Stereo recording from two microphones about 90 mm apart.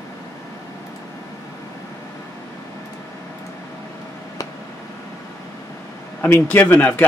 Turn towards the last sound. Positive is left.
turn(degrees=20)  # may be behind; listen again after turning